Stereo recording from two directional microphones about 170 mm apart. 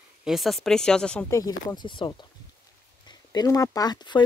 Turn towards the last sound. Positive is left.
turn(degrees=25)  # may be behind; listen again after turning